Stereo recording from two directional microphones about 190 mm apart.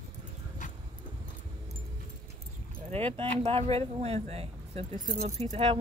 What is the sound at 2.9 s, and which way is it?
Speech, 30° right (ahead or behind).